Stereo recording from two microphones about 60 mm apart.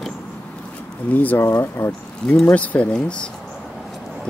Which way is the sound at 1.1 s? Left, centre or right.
Left.